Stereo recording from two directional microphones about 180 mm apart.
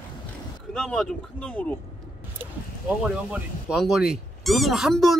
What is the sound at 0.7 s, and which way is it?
Speech, 5° left (ahead or behind).